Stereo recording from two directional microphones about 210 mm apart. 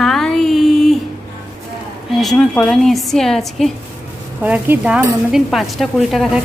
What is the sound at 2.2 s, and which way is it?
Speech, centre (ahead or behind).